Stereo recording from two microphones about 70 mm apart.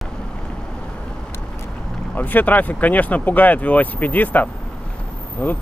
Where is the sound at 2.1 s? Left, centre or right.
Left.